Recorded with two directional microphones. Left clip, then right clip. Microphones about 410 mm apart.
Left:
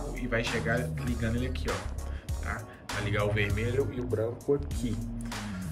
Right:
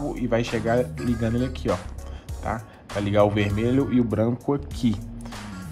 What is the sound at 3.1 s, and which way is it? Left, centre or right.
Speech, centre.